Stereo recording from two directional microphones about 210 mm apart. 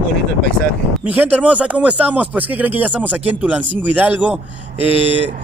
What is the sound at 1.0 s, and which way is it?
Speech, 10° right (ahead or behind).